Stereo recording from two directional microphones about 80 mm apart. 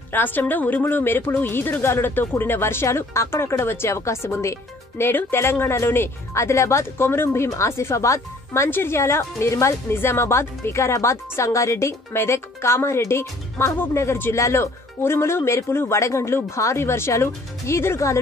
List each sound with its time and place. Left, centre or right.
0.1 s speech: left